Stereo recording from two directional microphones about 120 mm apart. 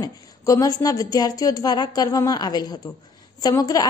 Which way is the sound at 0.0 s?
30° left (ahead or behind).